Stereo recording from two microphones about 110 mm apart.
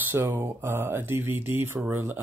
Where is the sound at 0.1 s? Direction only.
20° right (ahead or behind).